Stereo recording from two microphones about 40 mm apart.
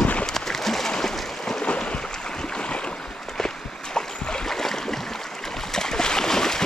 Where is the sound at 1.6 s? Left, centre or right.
Left.